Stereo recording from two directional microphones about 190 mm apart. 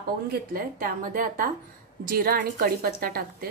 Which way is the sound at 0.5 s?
50° right (ahead or behind).